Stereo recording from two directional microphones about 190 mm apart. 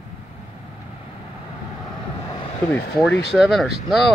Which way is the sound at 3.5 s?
Centre (ahead or behind).